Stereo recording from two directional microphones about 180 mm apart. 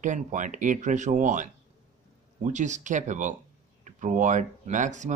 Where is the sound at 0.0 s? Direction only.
45° right (ahead or behind).